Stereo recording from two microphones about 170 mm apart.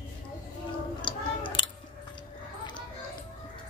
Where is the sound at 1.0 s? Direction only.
30° left (ahead or behind).